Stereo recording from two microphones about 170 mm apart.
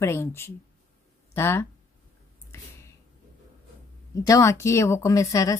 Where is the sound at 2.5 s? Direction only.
15° left (ahead or behind).